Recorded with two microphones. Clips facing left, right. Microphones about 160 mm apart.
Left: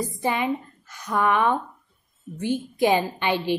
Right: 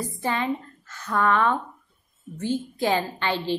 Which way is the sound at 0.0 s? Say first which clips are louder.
Left 2 dB; 15° left (ahead or behind).